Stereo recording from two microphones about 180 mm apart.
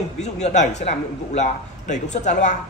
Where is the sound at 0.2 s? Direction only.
40° left (ahead or behind).